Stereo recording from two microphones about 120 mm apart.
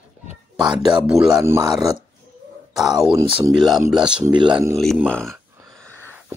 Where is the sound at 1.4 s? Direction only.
25° right (ahead or behind).